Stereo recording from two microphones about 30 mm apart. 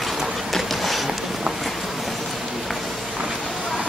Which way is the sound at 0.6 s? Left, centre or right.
Centre.